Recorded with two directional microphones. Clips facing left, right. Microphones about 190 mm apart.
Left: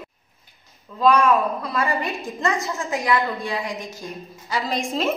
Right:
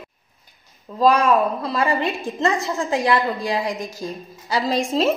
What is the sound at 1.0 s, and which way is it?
A woman's voice, 35° right (ahead or behind).